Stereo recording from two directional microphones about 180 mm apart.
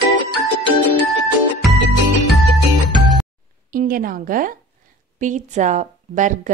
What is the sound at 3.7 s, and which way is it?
A woman's voice, 50° right (ahead or behind).